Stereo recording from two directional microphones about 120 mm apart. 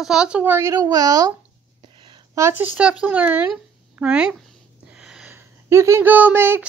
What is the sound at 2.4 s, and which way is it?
A child's voice, 20° right (ahead or behind).